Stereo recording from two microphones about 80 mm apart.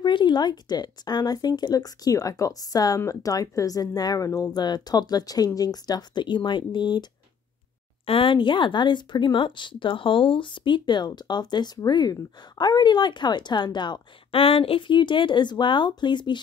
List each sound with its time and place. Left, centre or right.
0.0 s speech: left
8.2 s speech: left
14.8 s speech: left